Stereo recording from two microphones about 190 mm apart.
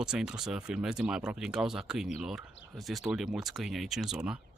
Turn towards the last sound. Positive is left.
turn(degrees=-5)  # may be behind; listen again after turning